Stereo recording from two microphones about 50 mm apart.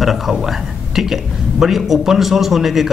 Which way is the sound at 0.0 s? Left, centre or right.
Centre.